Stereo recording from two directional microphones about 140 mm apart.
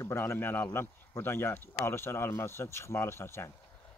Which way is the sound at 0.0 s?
20° left (ahead or behind).